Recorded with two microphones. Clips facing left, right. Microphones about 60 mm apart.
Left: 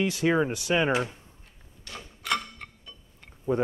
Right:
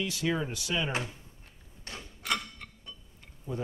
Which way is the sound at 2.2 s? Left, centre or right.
Left.